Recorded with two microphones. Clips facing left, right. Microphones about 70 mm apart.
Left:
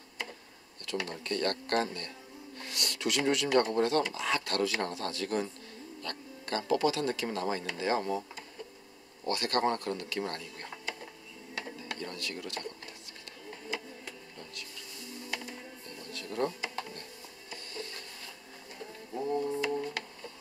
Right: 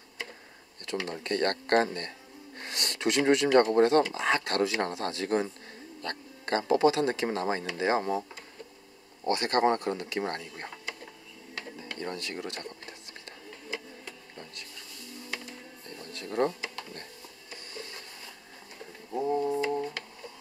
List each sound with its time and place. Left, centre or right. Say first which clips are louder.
0.8 s speech: right 2 dB; right
12.0 s speech: right 7 dB; right
16.1 s a sound: right 5 dB; right
19.1 s mantra: right 4 dB; centre